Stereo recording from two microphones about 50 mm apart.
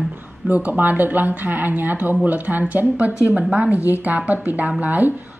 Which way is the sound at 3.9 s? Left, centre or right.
Right.